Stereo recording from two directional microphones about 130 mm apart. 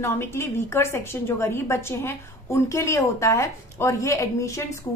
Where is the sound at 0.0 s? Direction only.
20° left (ahead or behind).